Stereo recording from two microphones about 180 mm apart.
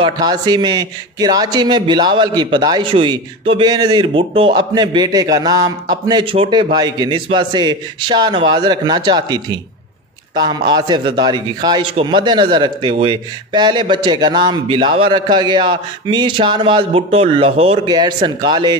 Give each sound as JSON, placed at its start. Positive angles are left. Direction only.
{"t": 0.0, "sound": "a man's voice", "side_deg": -25}